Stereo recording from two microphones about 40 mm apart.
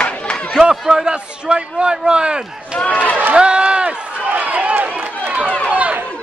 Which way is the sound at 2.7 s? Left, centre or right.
Left.